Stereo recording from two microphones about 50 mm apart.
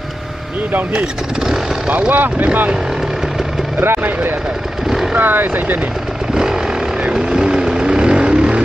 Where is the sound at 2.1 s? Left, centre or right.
Right.